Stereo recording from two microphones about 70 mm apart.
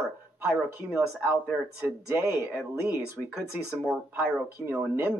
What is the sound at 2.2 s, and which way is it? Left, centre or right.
Speech, right.